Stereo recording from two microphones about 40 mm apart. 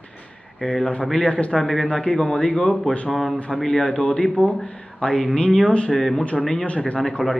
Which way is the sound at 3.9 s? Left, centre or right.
Left.